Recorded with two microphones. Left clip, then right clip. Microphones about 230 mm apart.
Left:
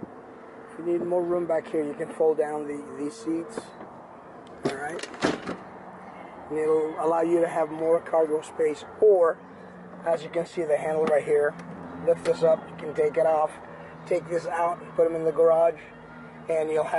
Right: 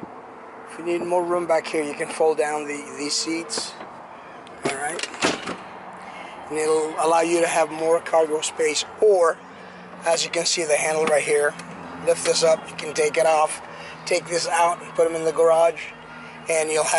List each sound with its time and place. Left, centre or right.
0.9 s speech: centre
4.6 s vehicle: centre
6.5 s speech: centre
9.0 s speech: left
10.0 s speech: centre